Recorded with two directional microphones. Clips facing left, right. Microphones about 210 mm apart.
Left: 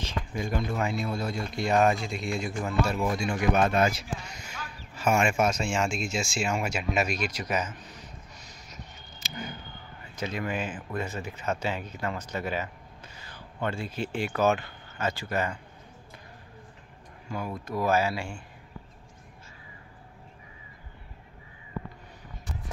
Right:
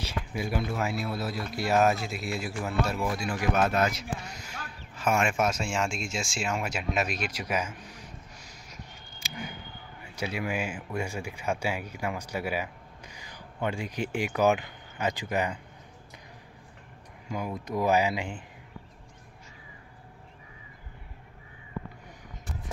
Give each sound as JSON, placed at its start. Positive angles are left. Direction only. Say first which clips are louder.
{"t": 0.0, "sound": "speech", "louder": "even", "side_deg": -10}
{"t": 9.3, "sound": "a sound", "louder": "left 1 dB", "side_deg": -10}
{"t": 10.0, "sound": "speech", "louder": "even", "side_deg": -10}
{"t": 17.3, "sound": "speech", "louder": "right 1 dB", "side_deg": -15}